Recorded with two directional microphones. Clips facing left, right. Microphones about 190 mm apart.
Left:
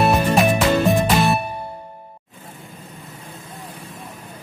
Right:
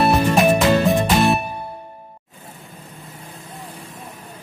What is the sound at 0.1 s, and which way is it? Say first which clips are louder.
Music: right 1 dB; centre (ahead or behind).